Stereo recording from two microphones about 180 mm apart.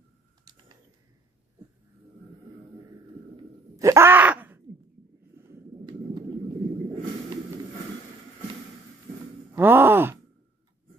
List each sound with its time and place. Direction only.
3.7 s groan: 15° right (ahead or behind)
5.5 s a sound: 25° right (ahead or behind)
9.5 s groan: 10° right (ahead or behind)